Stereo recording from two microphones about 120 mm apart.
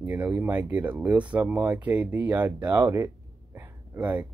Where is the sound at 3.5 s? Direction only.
20° right (ahead or behind).